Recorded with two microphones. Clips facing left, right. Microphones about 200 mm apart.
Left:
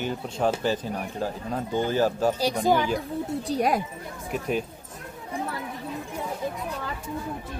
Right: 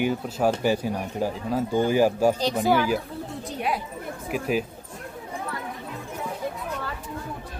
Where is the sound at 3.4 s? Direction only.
40° left (ahead or behind).